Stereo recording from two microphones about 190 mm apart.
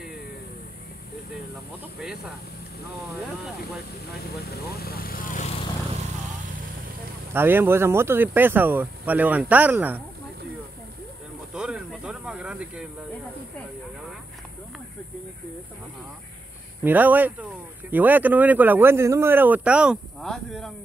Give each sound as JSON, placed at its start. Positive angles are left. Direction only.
{"t": 2.0, "sound": "speech", "side_deg": 0}
{"t": 4.5, "sound": "speech", "side_deg": 55}
{"t": 7.3, "sound": "speech", "side_deg": -10}
{"t": 11.5, "sound": "speech", "side_deg": 0}
{"t": 16.8, "sound": "speech", "side_deg": -10}